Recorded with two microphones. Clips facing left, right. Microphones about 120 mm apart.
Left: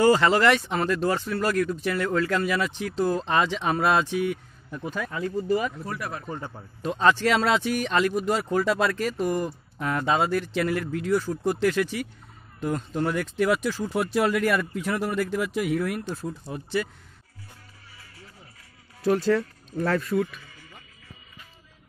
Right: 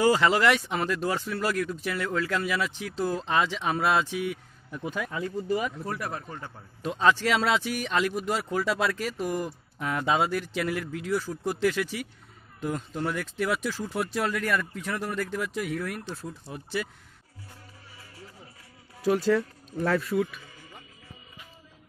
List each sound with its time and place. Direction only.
0.0 s speech: 5° right (ahead or behind)
5.9 s speech: 40° right (ahead or behind)
6.8 s speech: 5° right (ahead or behind)
18.9 s speech: 5° right (ahead or behind)